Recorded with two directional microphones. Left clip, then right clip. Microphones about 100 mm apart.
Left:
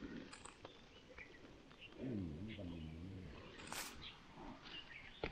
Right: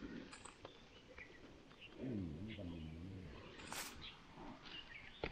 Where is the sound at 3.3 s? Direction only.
30° left (ahead or behind).